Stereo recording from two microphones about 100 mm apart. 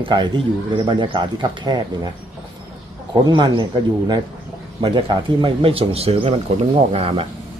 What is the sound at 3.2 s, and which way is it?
Speech, 45° right (ahead or behind).